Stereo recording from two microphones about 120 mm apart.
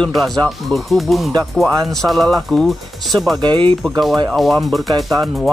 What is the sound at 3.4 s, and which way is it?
Speech, 40° right (ahead or behind).